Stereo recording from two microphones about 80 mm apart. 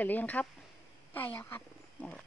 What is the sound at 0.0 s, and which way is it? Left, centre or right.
Speech, left.